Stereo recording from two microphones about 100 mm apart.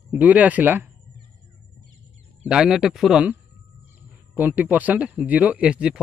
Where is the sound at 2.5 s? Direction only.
5° right (ahead or behind).